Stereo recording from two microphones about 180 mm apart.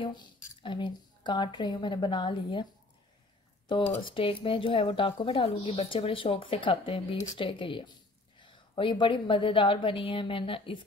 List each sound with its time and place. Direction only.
0.0 s speech: 25° left (ahead or behind)
3.6 s speech: 25° left (ahead or behind)